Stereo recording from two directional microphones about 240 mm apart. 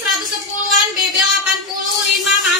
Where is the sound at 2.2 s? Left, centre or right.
Centre.